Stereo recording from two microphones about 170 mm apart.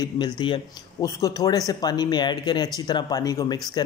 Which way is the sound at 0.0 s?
25° left (ahead or behind).